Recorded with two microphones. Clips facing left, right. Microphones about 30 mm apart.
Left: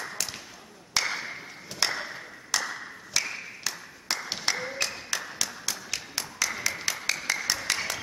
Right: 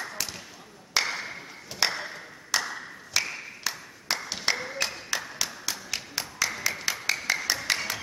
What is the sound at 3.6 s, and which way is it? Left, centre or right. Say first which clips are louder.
Clapping: right 1 dB; centre.